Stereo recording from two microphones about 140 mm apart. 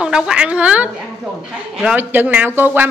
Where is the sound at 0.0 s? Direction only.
5° right (ahead or behind).